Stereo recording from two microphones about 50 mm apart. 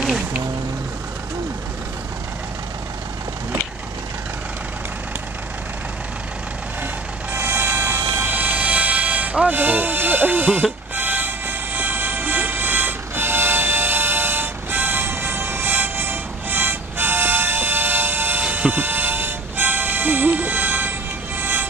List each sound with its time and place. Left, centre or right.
7.3 s music: right
8.5 s music: right